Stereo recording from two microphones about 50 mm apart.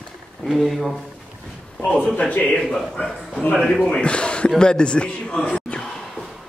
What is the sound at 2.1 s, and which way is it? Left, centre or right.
A man's voice, left.